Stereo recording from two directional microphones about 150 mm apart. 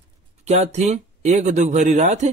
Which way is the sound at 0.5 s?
45° right (ahead or behind).